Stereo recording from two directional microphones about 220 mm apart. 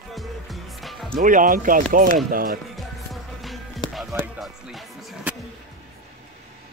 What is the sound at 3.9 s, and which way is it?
Music, centre (ahead or behind).